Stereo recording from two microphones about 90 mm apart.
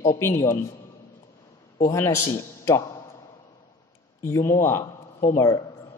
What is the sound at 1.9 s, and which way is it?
Speech, 35° left (ahead or behind).